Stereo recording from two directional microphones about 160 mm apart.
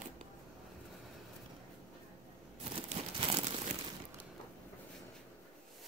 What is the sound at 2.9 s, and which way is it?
Crumpling, 35° right (ahead or behind).